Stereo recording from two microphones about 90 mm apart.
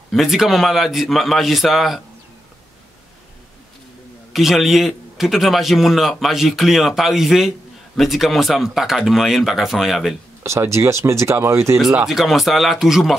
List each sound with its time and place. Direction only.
0.1 s a man's voice: centre (ahead or behind)
4.3 s a man's voice: 5° right (ahead or behind)
10.4 s speech: 35° right (ahead or behind)
11.8 s a man's voice: 5° right (ahead or behind)